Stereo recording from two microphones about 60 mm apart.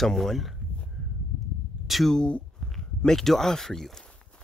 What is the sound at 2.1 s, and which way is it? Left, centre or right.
Speech, centre.